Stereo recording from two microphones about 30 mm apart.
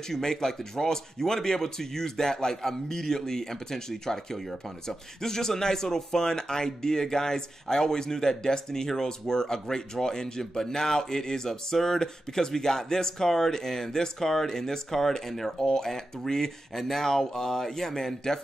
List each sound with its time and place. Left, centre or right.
0.1 s speech: centre